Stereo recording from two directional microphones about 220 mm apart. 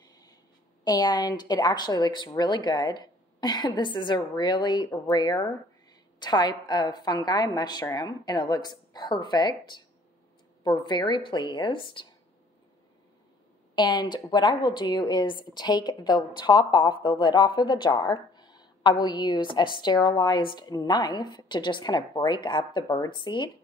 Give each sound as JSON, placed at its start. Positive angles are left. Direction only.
{"t": 0.8, "sound": "a woman's voice", "side_deg": 15}
{"t": 13.7, "sound": "a woman's voice", "side_deg": 20}